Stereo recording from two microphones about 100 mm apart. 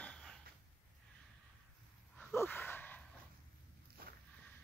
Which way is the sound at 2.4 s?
20° left (ahead or behind).